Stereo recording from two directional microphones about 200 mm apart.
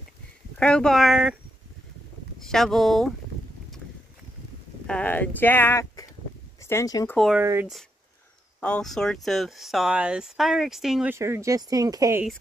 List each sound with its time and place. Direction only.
0.6 s speech: 5° left (ahead or behind)
2.3 s speech: centre (ahead or behind)
4.8 s speech: 5° left (ahead or behind)
7.2 s speech: centre (ahead or behind)
8.5 s speech: 5° left (ahead or behind)
11.1 s speech: 15° right (ahead or behind)